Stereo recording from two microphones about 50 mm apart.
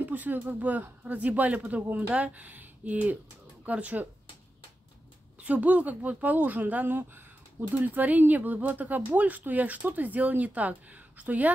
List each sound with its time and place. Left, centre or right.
0.0 s speech: right
5.4 s speech: right